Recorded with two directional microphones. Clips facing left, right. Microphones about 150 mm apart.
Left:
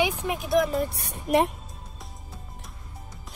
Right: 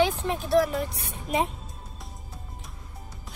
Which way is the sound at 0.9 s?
55° left (ahead or behind).